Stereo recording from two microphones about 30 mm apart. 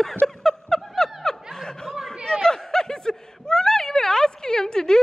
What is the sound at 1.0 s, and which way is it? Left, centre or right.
Snicker, centre.